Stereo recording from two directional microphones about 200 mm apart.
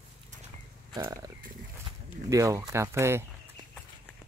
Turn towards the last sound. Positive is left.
turn(degrees=-15)  # may be behind; listen again after turning